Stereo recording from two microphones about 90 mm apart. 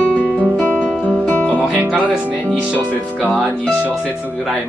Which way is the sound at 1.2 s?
15° left (ahead or behind).